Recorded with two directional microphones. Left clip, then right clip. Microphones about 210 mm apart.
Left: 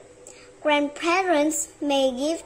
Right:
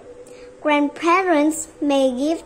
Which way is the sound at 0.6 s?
Centre (ahead or behind).